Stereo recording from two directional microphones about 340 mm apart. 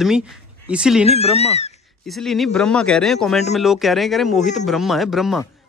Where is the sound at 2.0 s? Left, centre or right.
Centre.